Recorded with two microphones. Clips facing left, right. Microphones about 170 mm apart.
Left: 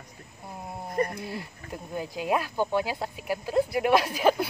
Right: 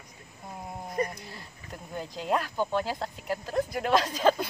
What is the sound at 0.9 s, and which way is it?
Speech, 50° left (ahead or behind).